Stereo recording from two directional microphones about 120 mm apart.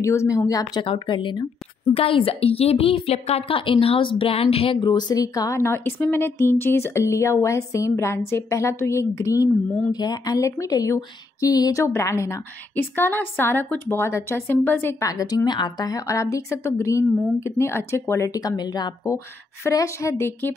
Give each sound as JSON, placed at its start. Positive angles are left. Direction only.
{"t": 0.0, "sound": "speech", "side_deg": 25}
{"t": 0.8, "sound": "a woman's voice", "side_deg": 40}
{"t": 4.8, "sound": "speech", "side_deg": 35}
{"t": 15.0, "sound": "speech", "side_deg": 30}